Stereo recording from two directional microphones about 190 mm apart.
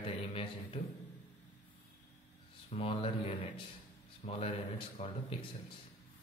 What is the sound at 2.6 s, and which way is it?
Speech, 30° left (ahead or behind).